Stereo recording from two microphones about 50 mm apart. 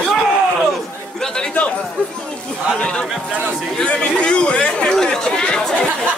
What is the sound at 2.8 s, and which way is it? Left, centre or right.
Speech, centre.